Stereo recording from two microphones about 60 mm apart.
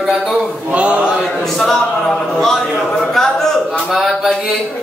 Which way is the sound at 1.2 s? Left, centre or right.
Centre.